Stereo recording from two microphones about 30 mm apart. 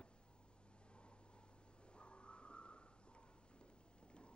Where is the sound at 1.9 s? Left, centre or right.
Left.